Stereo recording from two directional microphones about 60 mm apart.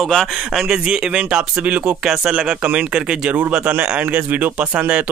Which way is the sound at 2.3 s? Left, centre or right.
Centre.